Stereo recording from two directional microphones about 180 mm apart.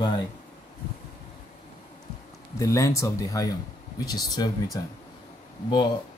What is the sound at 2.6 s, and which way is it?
Speech, 15° left (ahead or behind).